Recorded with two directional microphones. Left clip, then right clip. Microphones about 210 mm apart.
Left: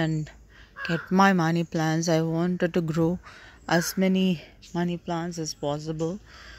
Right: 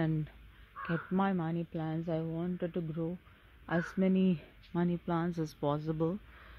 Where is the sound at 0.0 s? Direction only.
Centre (ahead or behind).